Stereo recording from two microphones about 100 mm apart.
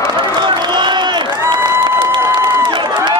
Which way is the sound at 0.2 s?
50° right (ahead or behind).